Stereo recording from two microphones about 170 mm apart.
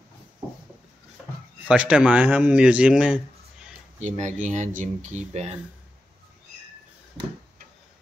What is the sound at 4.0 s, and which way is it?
Speech, 45° right (ahead or behind).